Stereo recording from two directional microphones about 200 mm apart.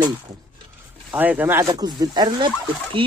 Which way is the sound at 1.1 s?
10° right (ahead or behind).